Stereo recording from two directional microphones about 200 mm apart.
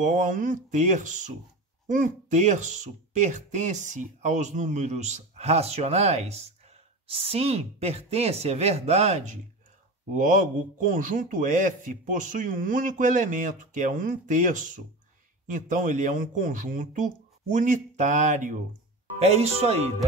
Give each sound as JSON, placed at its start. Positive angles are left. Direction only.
{"t": 0.0, "sound": "a man's voice", "side_deg": -40}